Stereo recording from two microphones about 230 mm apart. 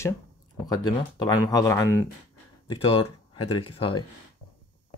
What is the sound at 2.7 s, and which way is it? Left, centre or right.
Speech, left.